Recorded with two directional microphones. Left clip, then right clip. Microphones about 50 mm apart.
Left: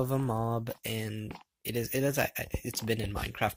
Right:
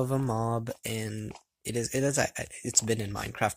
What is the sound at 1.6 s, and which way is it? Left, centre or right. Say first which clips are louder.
Speech: right 2 dB; right.